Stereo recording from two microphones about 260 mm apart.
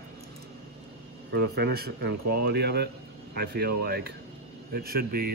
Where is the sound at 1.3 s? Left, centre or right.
Right.